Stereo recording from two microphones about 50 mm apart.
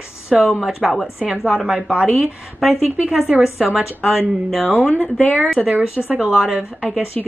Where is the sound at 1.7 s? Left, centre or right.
Right.